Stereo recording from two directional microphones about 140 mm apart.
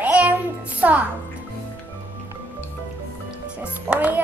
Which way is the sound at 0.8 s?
10° right (ahead or behind).